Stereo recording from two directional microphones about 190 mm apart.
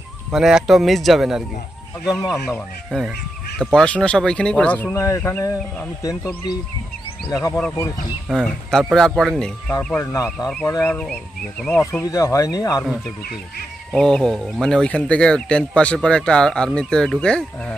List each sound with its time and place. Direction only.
0.3 s speech: 5° right (ahead or behind); by 6.1 s 15° left (ahead or behind)
7.4 s speech: 10° left (ahead or behind)
13.9 s speech: 5° left (ahead or behind)